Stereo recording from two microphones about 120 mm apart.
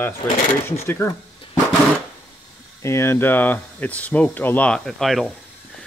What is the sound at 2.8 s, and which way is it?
Speech, 20° left (ahead or behind).